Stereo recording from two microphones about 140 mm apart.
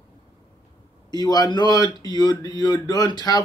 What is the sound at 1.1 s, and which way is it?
Speech, 30° left (ahead or behind).